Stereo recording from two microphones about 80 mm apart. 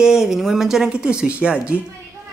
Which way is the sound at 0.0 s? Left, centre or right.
Centre.